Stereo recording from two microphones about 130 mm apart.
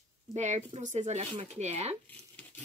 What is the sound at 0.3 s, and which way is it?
A woman's voice, 60° right (ahead or behind).